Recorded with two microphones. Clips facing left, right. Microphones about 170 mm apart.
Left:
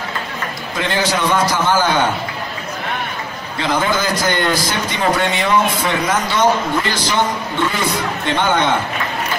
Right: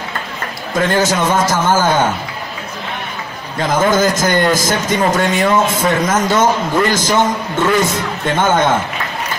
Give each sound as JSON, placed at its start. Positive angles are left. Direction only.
{"t": 0.7, "sound": "a man's voice", "side_deg": -45}
{"t": 3.5, "sound": "a man's voice", "side_deg": -45}